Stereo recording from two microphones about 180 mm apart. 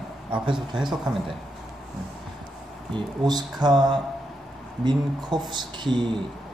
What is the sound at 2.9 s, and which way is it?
Speech, 20° right (ahead or behind).